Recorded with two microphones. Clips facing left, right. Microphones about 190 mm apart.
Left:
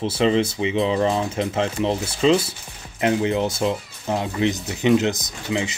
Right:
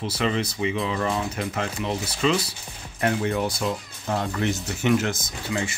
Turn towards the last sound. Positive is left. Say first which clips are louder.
# left 3 dB
turn(degrees=20)  # may be behind; listen again after turning